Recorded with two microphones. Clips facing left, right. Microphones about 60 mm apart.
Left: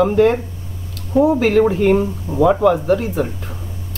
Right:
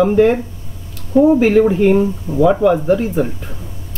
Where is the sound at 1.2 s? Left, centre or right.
Right.